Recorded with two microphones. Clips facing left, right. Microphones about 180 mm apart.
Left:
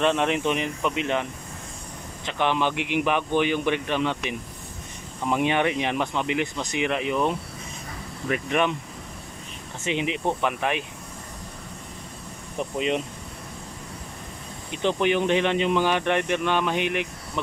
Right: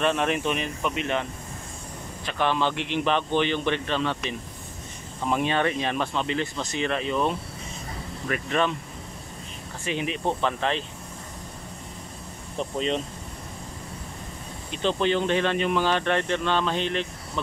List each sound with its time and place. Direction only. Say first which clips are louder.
0.0 s speech: left 2 dB; 15° left (ahead or behind)
2.2 s speech: left 1 dB; 20° left (ahead or behind)
9.8 s speech: left 2 dB; 20° left (ahead or behind)
12.5 s speech: left 1 dB; 10° left (ahead or behind)
14.7 s speech: left 1 dB; 15° left (ahead or behind)